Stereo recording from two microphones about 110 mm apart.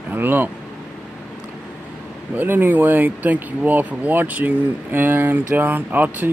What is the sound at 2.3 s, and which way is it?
Speech, 15° right (ahead or behind).